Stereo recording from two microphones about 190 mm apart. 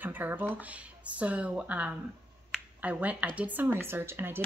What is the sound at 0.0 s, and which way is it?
A woman's voice, 10° right (ahead or behind).